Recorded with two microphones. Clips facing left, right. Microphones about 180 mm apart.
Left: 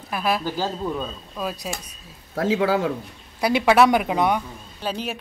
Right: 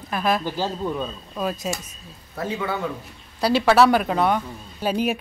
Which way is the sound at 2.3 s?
90° left.